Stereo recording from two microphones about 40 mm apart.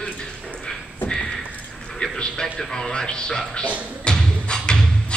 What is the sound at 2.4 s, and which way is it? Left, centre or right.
A man's voice, centre.